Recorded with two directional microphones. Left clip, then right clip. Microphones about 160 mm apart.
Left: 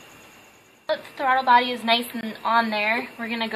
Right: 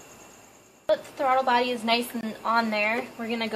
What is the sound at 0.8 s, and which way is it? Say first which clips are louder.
A woman's voice: even; 25° right (ahead or behind).